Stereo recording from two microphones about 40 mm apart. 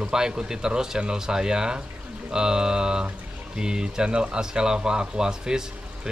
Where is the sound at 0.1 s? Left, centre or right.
Centre.